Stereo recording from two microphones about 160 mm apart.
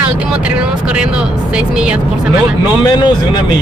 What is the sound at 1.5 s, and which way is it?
Speech, 5° right (ahead or behind).